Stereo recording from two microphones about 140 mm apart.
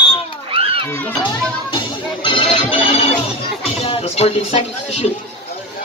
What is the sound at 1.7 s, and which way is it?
Music, 35° left (ahead or behind).